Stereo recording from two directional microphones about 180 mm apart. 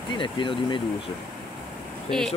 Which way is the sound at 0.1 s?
25° left (ahead or behind).